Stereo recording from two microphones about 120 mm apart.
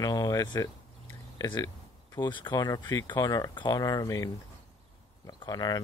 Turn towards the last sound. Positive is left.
turn(degrees=35)  # may be behind; listen again after turning